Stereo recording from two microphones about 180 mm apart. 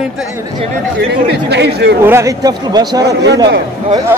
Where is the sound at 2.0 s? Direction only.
15° right (ahead or behind).